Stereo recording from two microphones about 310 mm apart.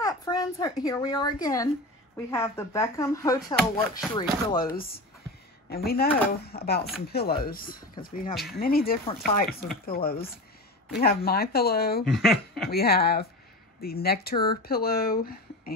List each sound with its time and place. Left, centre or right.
0.0 s a sound: centre
0.8 s speech: centre
5.7 s speech: left
12.1 s speech: centre
12.6 s speech: left